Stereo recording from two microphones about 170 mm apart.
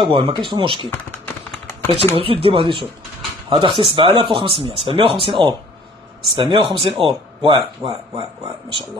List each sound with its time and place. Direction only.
0.0 s speech: 30° right (ahead or behind)
0.8 s typing: 10° left (ahead or behind)
2.1 s speech: 30° right (ahead or behind)